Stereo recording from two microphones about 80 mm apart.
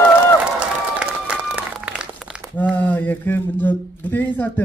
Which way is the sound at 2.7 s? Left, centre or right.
Left.